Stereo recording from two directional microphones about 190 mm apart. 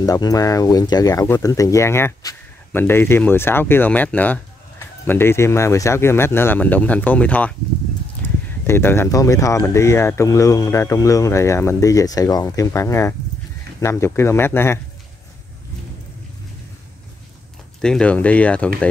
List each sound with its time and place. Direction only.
0.0 s speech: 20° left (ahead or behind)
8.6 s speech: 10° left (ahead or behind)
17.8 s speech: 5° left (ahead or behind)